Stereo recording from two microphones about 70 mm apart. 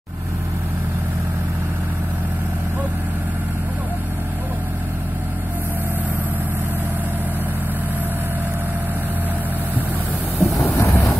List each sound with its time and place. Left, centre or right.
10.4 s vehicle: left